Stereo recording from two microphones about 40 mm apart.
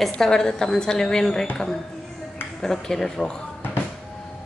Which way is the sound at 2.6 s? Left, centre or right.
Centre.